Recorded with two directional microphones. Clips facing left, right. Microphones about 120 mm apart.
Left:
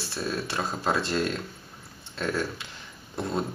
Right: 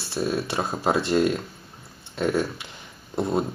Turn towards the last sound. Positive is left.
turn(degrees=-15)  # may be behind; listen again after turning